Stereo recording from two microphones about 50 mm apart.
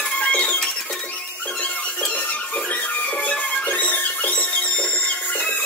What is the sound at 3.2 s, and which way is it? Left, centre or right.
Music, left.